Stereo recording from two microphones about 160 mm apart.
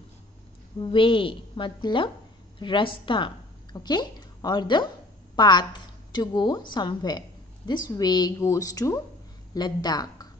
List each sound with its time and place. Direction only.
0.7 s a woman's voice: 30° left (ahead or behind)